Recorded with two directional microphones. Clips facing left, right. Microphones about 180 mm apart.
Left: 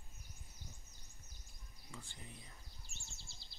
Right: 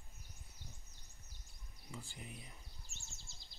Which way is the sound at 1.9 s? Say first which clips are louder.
Right 4 dB; 15° right (ahead or behind).